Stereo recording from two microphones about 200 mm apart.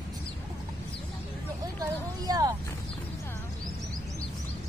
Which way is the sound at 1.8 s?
20° right (ahead or behind).